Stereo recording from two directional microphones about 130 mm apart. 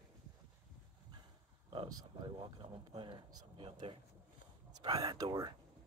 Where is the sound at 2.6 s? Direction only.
40° right (ahead or behind).